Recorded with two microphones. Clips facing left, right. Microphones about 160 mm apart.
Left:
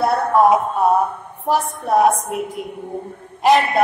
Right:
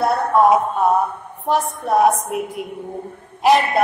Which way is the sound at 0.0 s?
Centre (ahead or behind).